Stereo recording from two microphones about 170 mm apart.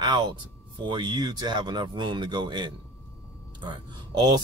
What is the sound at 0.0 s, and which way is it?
Speech, 25° right (ahead or behind).